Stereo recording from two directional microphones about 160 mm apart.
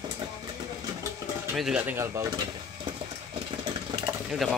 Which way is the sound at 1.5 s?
5° right (ahead or behind).